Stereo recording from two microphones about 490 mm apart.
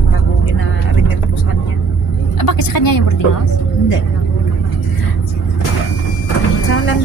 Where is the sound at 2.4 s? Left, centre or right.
Left.